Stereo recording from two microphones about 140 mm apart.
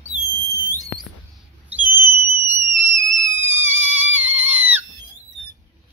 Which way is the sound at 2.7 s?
60° right (ahead or behind).